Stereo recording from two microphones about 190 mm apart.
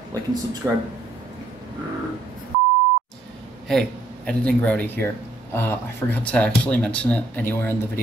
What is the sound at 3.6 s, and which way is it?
Speech, 5° left (ahead or behind).